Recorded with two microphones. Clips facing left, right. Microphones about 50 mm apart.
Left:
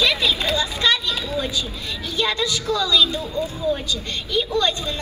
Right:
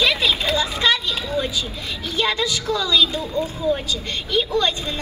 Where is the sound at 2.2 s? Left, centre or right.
Centre.